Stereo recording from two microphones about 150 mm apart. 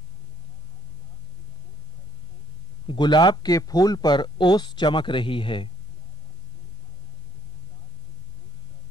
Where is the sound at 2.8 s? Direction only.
30° left (ahead or behind).